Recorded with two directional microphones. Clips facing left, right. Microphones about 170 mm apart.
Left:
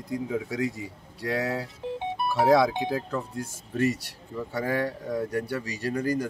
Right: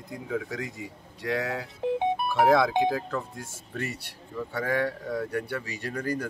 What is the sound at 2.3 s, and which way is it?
Speech, 10° left (ahead or behind).